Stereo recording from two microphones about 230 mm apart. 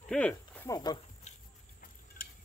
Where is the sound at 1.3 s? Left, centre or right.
Left.